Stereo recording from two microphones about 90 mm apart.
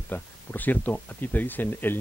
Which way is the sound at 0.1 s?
20° left (ahead or behind).